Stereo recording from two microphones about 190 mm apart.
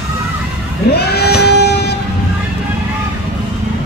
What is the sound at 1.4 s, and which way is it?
Vehicle, 60° left (ahead or behind).